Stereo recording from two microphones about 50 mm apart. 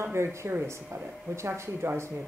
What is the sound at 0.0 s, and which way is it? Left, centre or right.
Speech, right.